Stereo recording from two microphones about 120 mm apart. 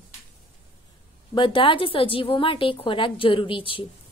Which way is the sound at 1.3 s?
45° left (ahead or behind).